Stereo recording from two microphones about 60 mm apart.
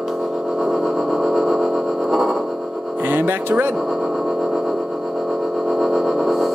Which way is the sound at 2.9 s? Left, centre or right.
Right.